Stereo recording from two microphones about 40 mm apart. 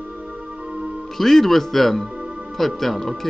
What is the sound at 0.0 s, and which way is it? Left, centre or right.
Music, right.